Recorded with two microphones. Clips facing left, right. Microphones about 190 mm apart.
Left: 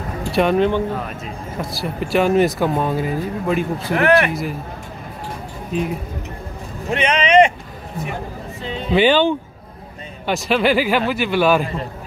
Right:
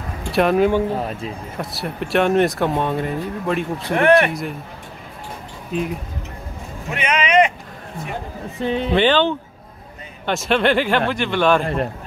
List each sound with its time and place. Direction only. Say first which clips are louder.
0.3 s speech: even; centre (ahead or behind)
5.7 s speech: left 1 dB; centre (ahead or behind)
6.9 s speech: left 4 dB; 30° left (ahead or behind)
8.6 s a man's voice: right 8 dB; 60° right (ahead or behind)
8.9 s speech: left 3 dB; 10° left (ahead or behind)
11.6 s a man's voice: right 4 dB; 65° right (ahead or behind)